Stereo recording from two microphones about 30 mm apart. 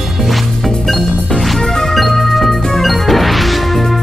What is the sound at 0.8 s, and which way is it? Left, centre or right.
Music, centre.